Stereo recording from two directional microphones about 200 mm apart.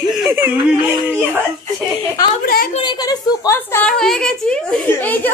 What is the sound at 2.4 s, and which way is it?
Speech, 45° left (ahead or behind).